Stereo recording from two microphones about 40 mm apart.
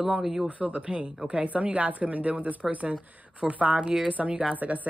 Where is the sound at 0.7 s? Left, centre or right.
Right.